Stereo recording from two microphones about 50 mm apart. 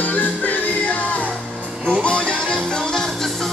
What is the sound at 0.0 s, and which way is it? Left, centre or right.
Music, left.